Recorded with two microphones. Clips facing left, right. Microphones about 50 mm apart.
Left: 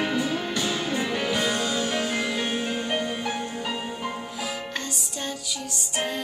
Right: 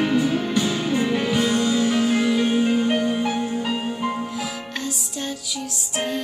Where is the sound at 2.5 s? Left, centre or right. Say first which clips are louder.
Right 7 dB; centre.